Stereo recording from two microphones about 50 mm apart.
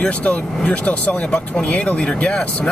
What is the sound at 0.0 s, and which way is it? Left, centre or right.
Speech, left.